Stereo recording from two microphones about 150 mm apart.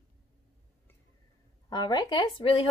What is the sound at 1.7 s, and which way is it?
Speech, 30° left (ahead or behind).